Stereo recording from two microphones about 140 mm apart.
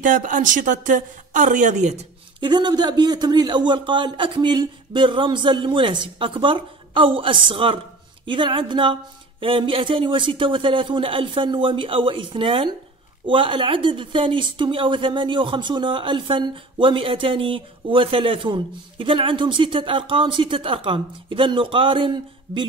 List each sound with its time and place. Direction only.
0.0 s speech: 70° right (ahead or behind)
2.4 s speech: 30° right (ahead or behind)